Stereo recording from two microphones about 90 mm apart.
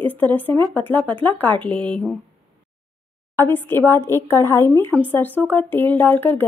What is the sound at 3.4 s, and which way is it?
A woman's voice, 25° left (ahead or behind).